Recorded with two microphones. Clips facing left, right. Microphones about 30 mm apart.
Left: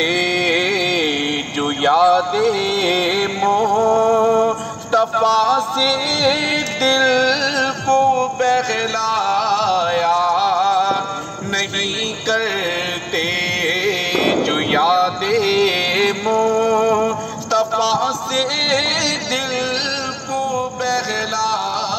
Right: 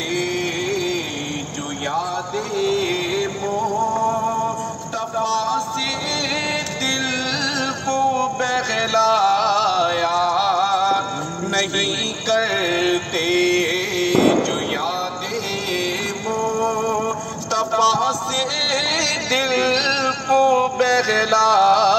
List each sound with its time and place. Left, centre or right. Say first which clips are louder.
1.9 s music: left 11 dB; left
4.9 s music: left 8 dB; left; by 11.0 s centre
12.3 s music: even; centre
14.2 s music: left 1 dB; left
17.5 s music: left 1 dB; centre
19.3 s music: right 2 dB; centre